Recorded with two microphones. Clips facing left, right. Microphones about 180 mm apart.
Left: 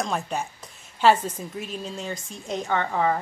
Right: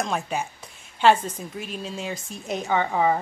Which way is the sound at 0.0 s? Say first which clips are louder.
Right 1 dB; centre (ahead or behind).